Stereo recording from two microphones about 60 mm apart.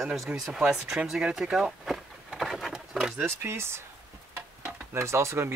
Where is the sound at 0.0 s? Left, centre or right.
Centre.